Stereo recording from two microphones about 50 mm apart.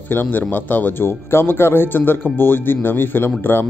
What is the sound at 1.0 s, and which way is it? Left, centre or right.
Speech, left.